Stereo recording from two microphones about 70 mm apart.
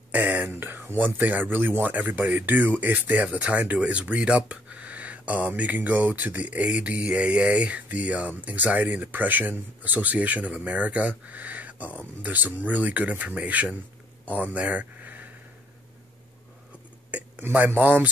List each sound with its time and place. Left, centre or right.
0.1 s speech: right
17.1 s speech: right